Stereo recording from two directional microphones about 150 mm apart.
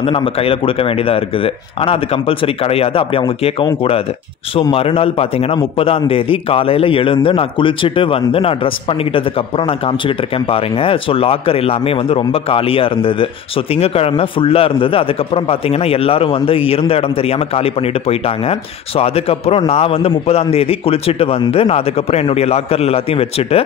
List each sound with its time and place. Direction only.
0.0 s a man's voice: 40° left (ahead or behind)